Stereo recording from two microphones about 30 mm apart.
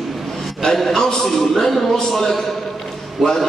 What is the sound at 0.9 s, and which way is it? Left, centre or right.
A man's voice, centre.